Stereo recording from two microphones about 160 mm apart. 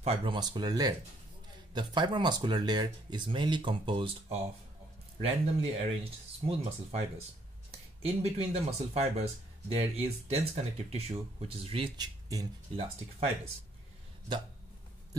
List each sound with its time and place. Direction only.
0.0 s speech: 35° right (ahead or behind)
12.7 s speech: 35° right (ahead or behind)